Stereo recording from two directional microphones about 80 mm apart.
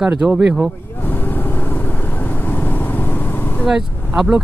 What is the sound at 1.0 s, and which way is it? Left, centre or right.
Vehicle, left.